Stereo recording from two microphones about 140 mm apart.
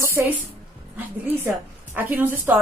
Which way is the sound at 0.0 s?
15° right (ahead or behind).